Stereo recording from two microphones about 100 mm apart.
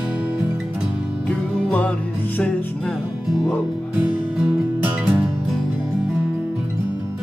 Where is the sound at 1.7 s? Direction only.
15° left (ahead or behind).